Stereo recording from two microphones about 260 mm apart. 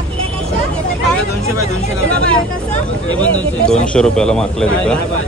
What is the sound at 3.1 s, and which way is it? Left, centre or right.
Speech, centre.